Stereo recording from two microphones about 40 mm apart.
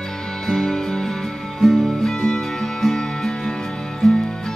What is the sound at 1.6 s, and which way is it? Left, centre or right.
Music, centre.